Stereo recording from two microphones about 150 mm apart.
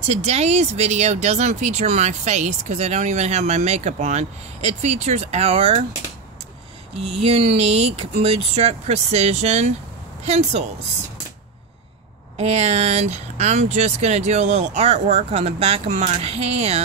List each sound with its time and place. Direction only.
0.0 s speech: 45° right (ahead or behind)
7.2 s speech: 40° right (ahead or behind)
12.4 s speech: 45° right (ahead or behind)